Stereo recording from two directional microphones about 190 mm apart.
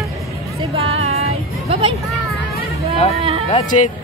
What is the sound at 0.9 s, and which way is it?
Music, 35° right (ahead or behind).